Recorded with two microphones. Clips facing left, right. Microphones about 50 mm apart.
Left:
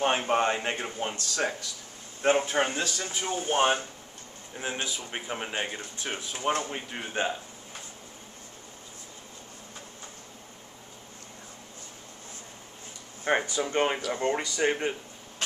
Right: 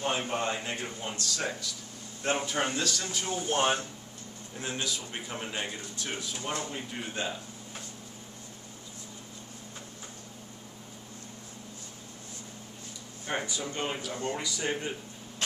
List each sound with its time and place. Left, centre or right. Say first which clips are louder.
0.0 s a man's voice: left 6 dB; left
13.3 s a sound: left 8 dB; left
13.7 s speech: left 7 dB; left